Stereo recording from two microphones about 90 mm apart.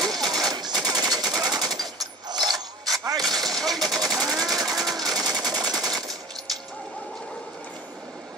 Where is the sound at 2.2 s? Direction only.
50° right (ahead or behind).